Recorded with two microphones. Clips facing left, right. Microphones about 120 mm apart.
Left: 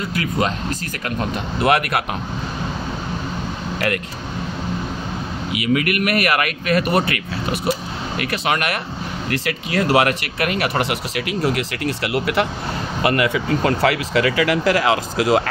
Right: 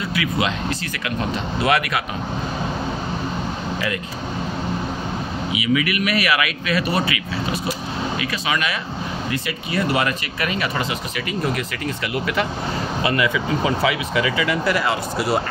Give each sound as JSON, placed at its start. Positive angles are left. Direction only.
{"t": 0.1, "sound": "speech", "side_deg": 40}
{"t": 1.6, "sound": "speech", "side_deg": 55}
{"t": 5.5, "sound": "speech", "side_deg": 50}
{"t": 8.2, "sound": "speech", "side_deg": 60}
{"t": 9.3, "sound": "speech", "side_deg": 90}